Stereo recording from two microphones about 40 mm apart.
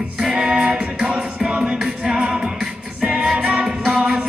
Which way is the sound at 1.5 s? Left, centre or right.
Right.